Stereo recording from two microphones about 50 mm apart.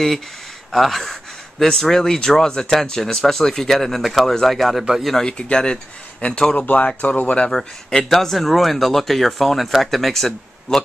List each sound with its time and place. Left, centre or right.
0.7 s speech: centre; by 6.6 s left
6.6 s speech: left
7.5 s speech: centre